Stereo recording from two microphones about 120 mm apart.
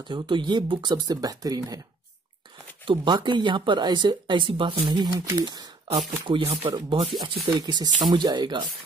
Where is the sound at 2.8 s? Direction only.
40° right (ahead or behind).